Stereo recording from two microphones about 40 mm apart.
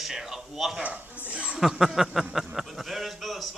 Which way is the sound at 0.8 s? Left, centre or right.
Right.